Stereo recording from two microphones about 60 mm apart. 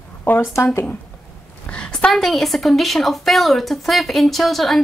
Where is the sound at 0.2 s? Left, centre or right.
Left.